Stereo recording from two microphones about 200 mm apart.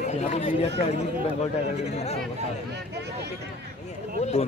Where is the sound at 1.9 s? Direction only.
30° left (ahead or behind).